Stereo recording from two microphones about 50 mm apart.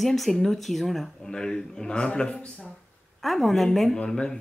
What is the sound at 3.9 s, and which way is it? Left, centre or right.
Speech, centre.